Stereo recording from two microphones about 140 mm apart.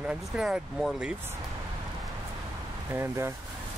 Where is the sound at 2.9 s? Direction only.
20° right (ahead or behind).